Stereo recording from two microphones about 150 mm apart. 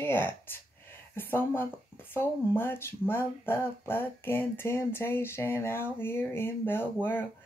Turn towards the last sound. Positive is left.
turn(degrees=15)  # may be behind; listen again after turning